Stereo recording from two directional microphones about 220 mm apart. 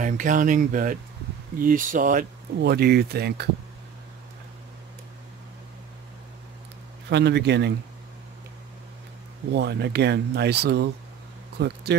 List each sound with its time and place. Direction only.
0.0 s speech: 35° right (ahead or behind)
7.1 s speech: 50° right (ahead or behind)
9.5 s speech: 50° right (ahead or behind)